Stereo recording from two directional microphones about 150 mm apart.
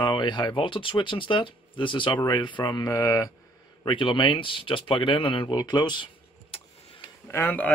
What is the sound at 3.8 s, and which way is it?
Speech, 35° left (ahead or behind).